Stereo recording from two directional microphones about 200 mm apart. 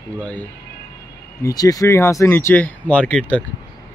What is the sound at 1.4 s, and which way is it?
Speech, 20° left (ahead or behind).